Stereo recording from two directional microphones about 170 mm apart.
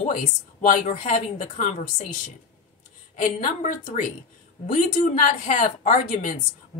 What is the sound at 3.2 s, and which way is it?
Speech, 45° left (ahead or behind).